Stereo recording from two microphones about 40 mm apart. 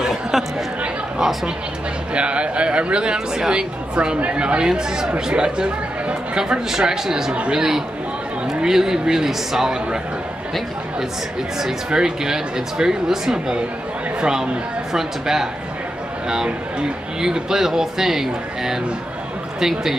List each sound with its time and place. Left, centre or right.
2.1 s speech: right; by 9.8 s centre
11.9 s speech: centre
17.2 s speech: centre